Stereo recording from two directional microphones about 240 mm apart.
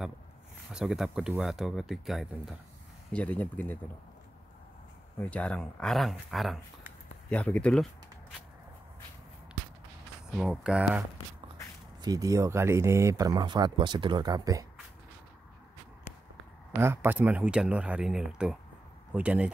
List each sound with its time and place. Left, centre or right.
0.7 s speech: centre
5.1 s speech: centre
10.3 s speech: centre
12.0 s speech: centre
16.7 s speech: centre